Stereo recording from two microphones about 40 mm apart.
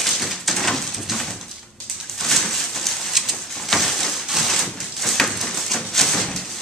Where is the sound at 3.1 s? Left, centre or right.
Centre.